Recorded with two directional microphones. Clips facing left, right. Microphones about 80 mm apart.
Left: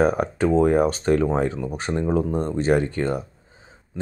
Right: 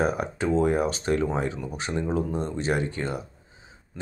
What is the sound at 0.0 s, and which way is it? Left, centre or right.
Speech, left.